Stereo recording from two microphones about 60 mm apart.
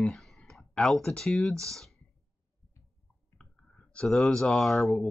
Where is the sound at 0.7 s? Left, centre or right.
Centre.